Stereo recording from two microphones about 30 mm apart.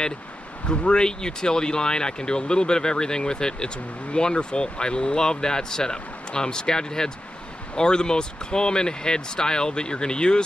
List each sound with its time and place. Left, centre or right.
0.7 s speech: left